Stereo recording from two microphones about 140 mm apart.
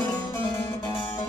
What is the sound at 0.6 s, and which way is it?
Music, 30° left (ahead or behind).